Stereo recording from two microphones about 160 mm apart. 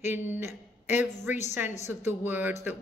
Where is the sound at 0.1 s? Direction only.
10° right (ahead or behind).